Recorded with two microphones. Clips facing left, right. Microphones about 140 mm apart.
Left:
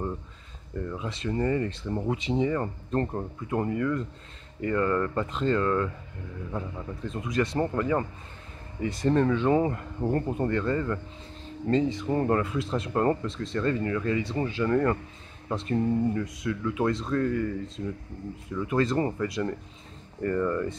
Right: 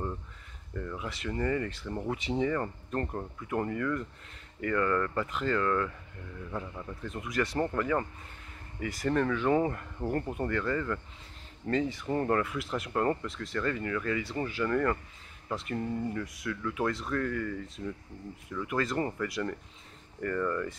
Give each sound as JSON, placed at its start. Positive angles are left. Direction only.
{"t": 0.7, "sound": "speech", "side_deg": 20}